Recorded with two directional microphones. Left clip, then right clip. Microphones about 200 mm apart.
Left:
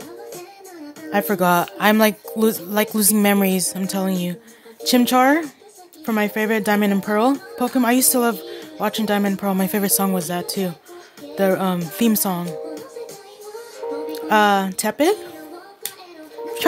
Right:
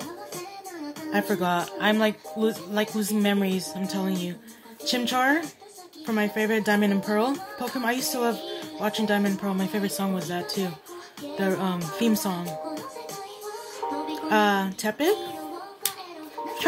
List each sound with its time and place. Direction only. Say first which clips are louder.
1.1 s speech: left 7 dB; 55° left (ahead or behind)
14.3 s speech: left 7 dB; 55° left (ahead or behind)